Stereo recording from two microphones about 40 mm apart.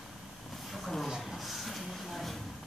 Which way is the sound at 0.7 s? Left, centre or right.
Centre.